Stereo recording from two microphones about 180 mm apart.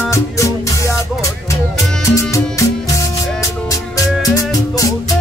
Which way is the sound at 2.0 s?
15° left (ahead or behind).